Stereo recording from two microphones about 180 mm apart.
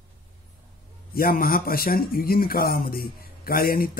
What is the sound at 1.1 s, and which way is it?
A man's voice, 55° left (ahead or behind).